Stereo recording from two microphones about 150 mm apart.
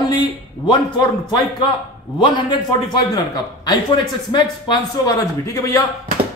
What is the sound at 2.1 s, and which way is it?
A man's voice, 30° left (ahead or behind).